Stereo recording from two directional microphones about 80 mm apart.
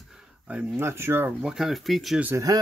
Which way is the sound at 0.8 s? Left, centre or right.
Right.